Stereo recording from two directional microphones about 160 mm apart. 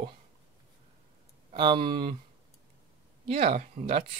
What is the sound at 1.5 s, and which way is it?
Speech, 30° right (ahead or behind).